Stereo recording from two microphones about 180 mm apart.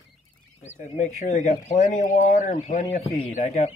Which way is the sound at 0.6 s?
40° left (ahead or behind).